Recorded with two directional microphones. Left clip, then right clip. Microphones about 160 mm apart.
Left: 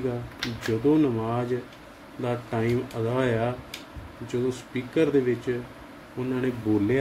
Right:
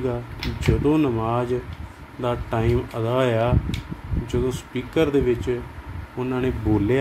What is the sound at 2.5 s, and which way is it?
Speech, 30° right (ahead or behind).